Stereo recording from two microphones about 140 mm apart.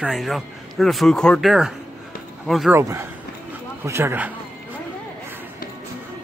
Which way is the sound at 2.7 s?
15° right (ahead or behind).